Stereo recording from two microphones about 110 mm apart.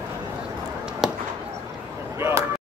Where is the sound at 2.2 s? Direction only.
30° right (ahead or behind).